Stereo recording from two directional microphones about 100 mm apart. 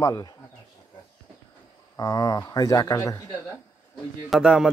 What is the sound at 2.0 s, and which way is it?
Speech, 35° left (ahead or behind).